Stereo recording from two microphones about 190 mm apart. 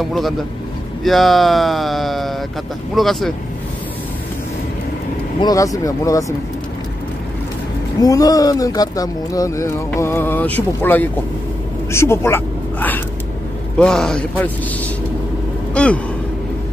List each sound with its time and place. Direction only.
0.0 s speech: centre (ahead or behind)
5.4 s speech: 20° left (ahead or behind)
8.0 s speech: 20° left (ahead or behind); by 14.5 s 5° left (ahead or behind)
15.7 s a sound: 5° left (ahead or behind)